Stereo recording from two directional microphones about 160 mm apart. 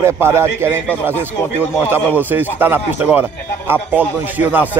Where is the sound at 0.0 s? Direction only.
15° right (ahead or behind).